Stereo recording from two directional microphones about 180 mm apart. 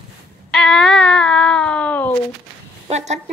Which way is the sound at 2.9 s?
40° right (ahead or behind).